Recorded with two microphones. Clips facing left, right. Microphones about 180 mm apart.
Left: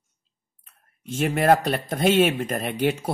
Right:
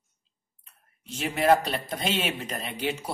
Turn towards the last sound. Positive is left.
turn(degrees=50)  # may be behind; listen again after turning